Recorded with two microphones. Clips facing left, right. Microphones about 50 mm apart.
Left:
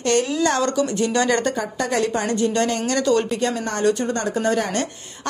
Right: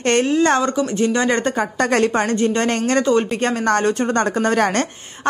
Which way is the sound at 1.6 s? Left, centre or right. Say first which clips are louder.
Right 5 dB; right.